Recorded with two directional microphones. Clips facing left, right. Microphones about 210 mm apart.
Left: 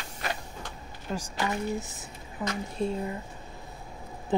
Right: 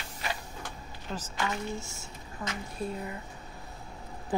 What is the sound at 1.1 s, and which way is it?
A woman's voice, 15° left (ahead or behind).